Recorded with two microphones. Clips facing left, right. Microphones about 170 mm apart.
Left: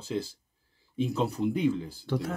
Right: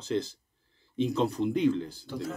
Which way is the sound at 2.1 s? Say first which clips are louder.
Left 7 dB; 80° left.